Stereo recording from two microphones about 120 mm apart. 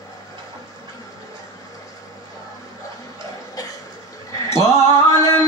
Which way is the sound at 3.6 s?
30° left (ahead or behind).